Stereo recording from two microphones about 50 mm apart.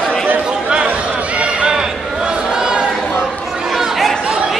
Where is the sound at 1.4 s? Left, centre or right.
Centre.